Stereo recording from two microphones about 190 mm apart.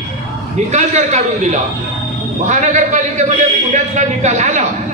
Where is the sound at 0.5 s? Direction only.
35° right (ahead or behind).